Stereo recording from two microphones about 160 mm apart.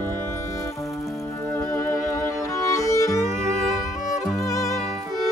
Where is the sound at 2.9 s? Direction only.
20° left (ahead or behind).